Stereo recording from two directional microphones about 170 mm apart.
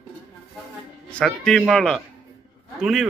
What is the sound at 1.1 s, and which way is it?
Speech, 5° left (ahead or behind).